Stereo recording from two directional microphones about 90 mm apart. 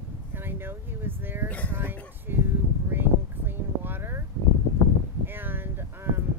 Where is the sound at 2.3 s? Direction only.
25° right (ahead or behind).